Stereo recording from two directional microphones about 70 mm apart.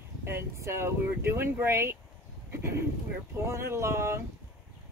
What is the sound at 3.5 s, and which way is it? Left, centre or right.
Speech, right.